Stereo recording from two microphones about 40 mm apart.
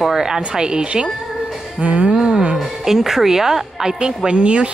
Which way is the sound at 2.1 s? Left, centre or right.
Centre.